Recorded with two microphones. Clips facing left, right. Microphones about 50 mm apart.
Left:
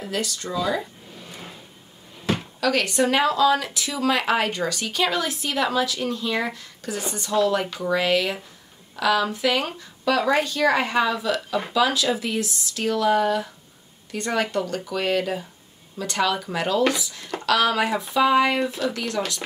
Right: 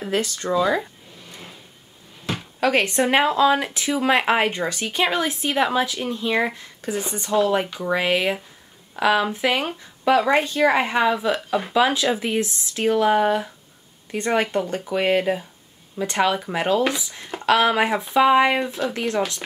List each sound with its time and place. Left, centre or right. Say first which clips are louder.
0.0 s speech: right 4 dB; right
1.3 s drawer open or close: left 1 dB; centre
2.6 s speech: right 3 dB; right